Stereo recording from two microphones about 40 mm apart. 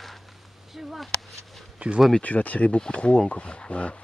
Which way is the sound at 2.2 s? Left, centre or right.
Left.